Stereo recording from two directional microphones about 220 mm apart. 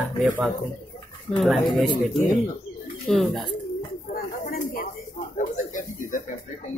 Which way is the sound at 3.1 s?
Centre (ahead or behind).